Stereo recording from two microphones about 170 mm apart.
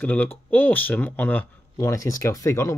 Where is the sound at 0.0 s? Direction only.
10° left (ahead or behind).